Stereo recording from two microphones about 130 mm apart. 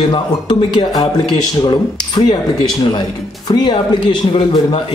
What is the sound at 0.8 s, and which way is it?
A man's voice, 30° left (ahead or behind).